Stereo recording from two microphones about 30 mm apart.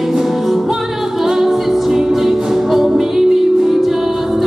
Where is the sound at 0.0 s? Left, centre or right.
Centre.